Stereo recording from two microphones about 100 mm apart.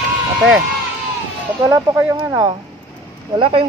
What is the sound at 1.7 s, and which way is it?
Speech, 30° right (ahead or behind).